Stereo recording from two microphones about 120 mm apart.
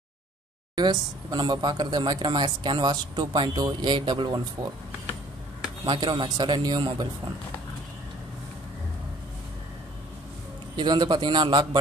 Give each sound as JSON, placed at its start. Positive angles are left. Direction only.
{"t": 0.7, "sound": "speech", "side_deg": -35}
{"t": 5.9, "sound": "speech", "side_deg": -40}
{"t": 10.8, "sound": "speech", "side_deg": -40}